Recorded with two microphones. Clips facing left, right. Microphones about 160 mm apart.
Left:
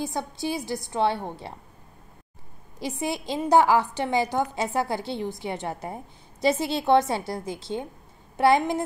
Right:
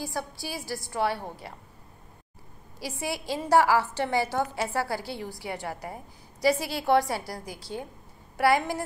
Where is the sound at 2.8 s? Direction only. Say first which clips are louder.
Left 4 dB; 20° left (ahead or behind).